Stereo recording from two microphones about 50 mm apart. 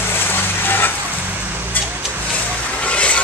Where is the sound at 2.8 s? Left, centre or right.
Left.